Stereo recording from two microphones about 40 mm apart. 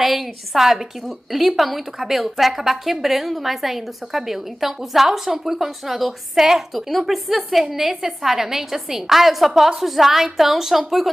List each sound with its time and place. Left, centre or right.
0.0 s a woman's voice: centre